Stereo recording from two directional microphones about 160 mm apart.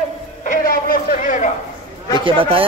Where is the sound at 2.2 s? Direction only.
35° right (ahead or behind).